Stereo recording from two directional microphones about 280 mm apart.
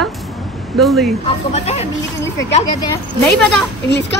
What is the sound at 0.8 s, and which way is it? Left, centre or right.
Speech, centre.